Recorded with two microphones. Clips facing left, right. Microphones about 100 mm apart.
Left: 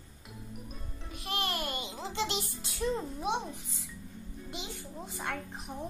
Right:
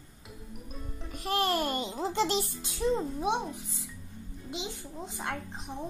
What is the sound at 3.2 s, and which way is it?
Speech, 15° right (ahead or behind).